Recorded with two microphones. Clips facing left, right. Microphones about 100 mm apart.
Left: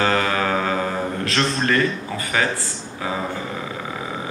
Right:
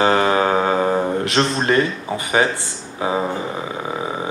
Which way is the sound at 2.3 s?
25° right (ahead or behind).